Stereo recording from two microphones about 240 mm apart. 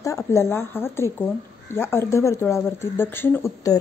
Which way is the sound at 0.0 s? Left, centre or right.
Centre.